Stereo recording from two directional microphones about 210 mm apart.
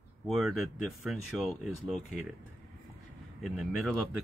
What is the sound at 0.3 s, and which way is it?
Speech, centre (ahead or behind).